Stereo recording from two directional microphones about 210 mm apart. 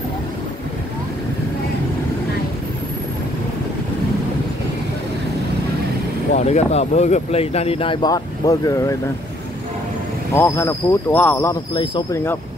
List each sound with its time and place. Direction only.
6.3 s speech: 30° left (ahead or behind); by 8.9 s 15° left (ahead or behind)
10.3 s speech: 10° left (ahead or behind)
11.7 s speech: 20° left (ahead or behind)